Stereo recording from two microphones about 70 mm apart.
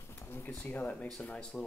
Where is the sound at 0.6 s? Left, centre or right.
Left.